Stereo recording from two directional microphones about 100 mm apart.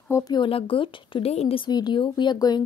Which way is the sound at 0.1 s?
35° left (ahead or behind).